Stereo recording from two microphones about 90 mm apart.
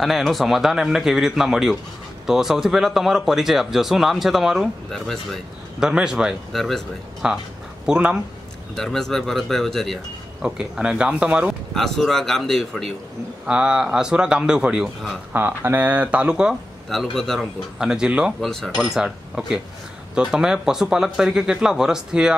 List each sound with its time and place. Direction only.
0.0 s speech: centre (ahead or behind)
5.9 s speech: 10° right (ahead or behind)
8.7 s speech: 5° left (ahead or behind)
10.4 s speech: 10° right (ahead or behind)
11.7 s speech: 5° left (ahead or behind)
13.5 s speech: 10° right (ahead or behind)
15.3 s speech: 20° right (ahead or behind)
16.9 s speech: 5° left (ahead or behind)
17.7 s speech: 10° right (ahead or behind)
18.4 s speech: 5° left (ahead or behind)
18.9 s speech: 5° right (ahead or behind)